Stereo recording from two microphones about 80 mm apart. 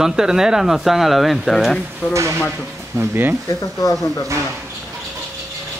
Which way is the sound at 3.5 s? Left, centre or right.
Left.